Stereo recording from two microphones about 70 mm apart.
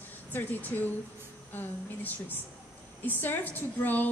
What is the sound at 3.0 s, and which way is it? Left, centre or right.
A woman's voice, left.